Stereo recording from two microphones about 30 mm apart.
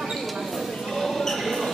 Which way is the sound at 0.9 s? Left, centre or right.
Centre.